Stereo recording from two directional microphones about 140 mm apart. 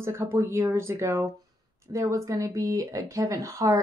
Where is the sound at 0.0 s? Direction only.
20° right (ahead or behind).